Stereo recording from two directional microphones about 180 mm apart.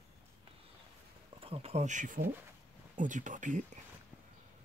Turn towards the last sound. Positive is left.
turn(degrees=-45)  # may be behind; listen again after turning